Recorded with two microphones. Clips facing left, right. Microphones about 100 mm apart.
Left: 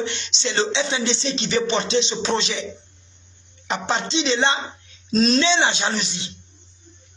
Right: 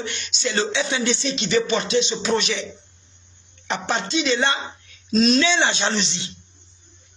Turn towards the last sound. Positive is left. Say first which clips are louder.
# right 2 dB
turn(degrees=5)  # may be behind; listen again after turning